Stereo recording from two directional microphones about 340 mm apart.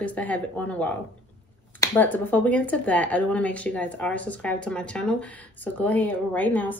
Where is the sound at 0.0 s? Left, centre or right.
Centre.